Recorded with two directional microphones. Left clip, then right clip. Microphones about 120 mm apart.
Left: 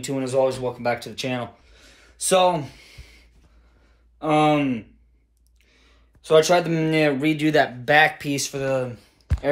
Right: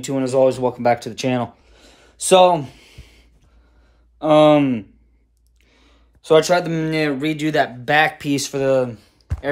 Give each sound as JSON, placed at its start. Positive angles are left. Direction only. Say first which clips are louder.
{"t": 0.1, "sound": "speech", "louder": "right 5 dB", "side_deg": -35}
{"t": 5.7, "sound": "clicking", "louder": "right 3 dB", "side_deg": -30}
{"t": 6.5, "sound": "speech", "louder": "right 1 dB", "side_deg": 15}
{"t": 7.4, "sound": "speech", "louder": "right 1 dB", "side_deg": -10}
{"t": 8.3, "sound": "speech", "louder": "right 6 dB", "side_deg": -35}